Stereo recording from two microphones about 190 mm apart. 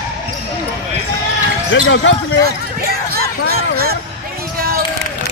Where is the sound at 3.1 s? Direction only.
55° right (ahead or behind).